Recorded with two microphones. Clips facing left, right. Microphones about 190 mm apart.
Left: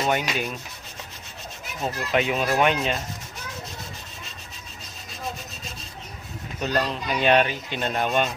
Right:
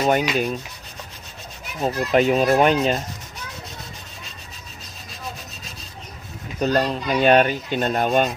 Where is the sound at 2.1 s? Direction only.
40° right (ahead or behind).